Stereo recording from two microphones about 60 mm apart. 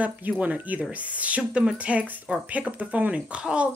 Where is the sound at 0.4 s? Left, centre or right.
Right.